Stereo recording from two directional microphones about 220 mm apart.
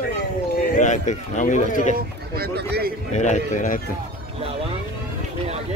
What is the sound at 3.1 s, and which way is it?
Speech, 35° left (ahead or behind).